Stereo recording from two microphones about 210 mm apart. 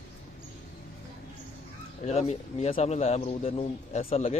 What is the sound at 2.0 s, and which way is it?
A man's voice, 30° left (ahead or behind).